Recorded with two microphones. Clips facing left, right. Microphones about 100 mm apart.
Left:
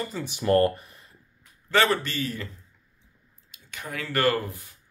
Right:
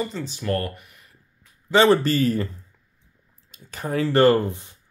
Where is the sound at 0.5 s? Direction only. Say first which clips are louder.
Left 6 dB; 30° left (ahead or behind).